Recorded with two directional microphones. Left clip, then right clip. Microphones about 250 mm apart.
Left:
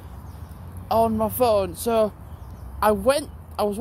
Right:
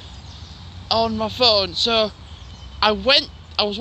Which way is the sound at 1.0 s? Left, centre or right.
Centre.